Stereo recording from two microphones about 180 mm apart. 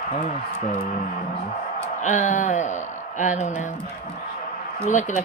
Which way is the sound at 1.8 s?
45° left (ahead or behind).